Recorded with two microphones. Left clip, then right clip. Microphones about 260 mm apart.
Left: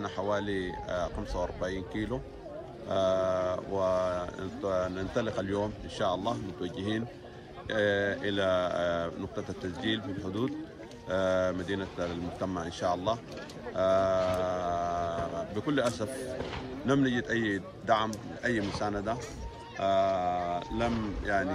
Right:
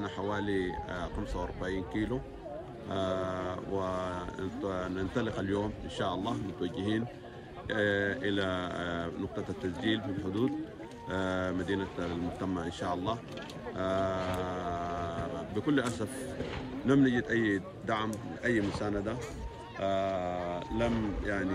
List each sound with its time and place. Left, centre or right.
0.0 s speech: centre
13.7 s a sound: centre
15.5 s a man's voice: centre
18.6 s a man's voice: left
18.9 s music: centre
20.8 s speech: centre